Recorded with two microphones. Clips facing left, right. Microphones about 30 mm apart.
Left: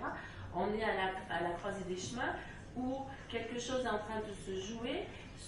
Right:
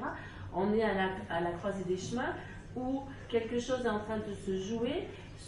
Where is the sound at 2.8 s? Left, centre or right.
Right.